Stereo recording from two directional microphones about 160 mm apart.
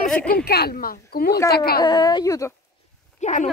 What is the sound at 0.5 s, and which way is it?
Speech, 80° left.